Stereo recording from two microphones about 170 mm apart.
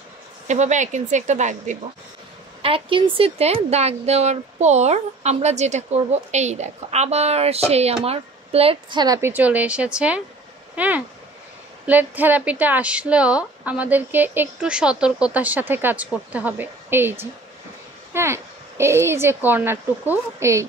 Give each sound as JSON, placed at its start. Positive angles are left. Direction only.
{"t": 0.5, "sound": "speech", "side_deg": -45}
{"t": 2.6, "sound": "speech", "side_deg": -30}
{"t": 9.0, "sound": "a woman's voice", "side_deg": -20}
{"t": 9.3, "sound": "speech", "side_deg": -10}